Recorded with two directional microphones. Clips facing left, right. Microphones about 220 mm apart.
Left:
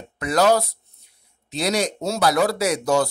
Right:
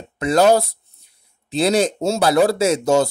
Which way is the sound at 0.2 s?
25° right (ahead or behind).